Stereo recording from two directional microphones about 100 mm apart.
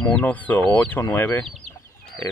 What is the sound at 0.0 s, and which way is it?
Speech, 15° left (ahead or behind).